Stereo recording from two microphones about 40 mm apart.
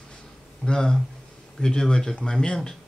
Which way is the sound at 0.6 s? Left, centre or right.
Centre.